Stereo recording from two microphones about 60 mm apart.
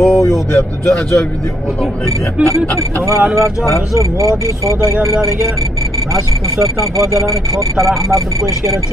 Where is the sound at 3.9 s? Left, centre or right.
Right.